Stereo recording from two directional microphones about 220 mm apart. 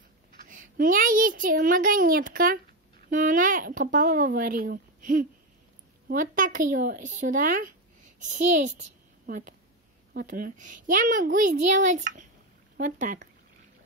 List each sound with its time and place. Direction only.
0.5 s a child's voice: 35° right (ahead or behind)